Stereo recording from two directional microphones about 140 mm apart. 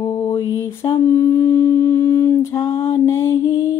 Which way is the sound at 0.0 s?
20° left (ahead or behind).